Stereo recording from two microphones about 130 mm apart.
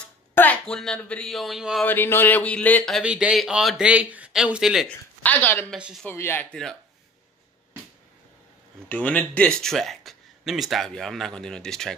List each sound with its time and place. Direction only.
0.3 s speech: 15° left (ahead or behind); by 1.9 s centre (ahead or behind)
1.9 s speech: 15° left (ahead or behind)
2.9 s speech: 10° right (ahead or behind)
4.8 s speech: 10° left (ahead or behind)
6.5 s speech: 5° left (ahead or behind)
8.8 s speech: 10° left (ahead or behind)